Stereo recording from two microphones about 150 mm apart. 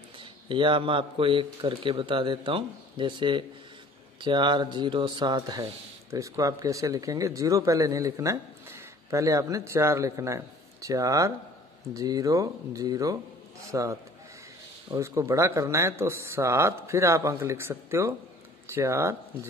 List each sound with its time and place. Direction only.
0.2 s a man's voice: 35° right (ahead or behind)
15.0 s speech: 20° right (ahead or behind)